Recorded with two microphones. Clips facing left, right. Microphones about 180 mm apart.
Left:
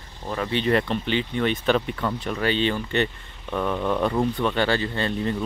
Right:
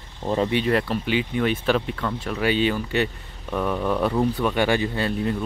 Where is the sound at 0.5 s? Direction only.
5° right (ahead or behind).